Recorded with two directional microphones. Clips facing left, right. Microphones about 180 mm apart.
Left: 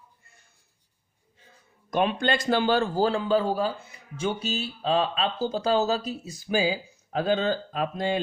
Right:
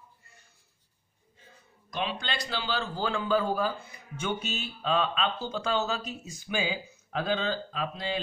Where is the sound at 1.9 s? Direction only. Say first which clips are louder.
Left 9 dB; 50° left (ahead or behind).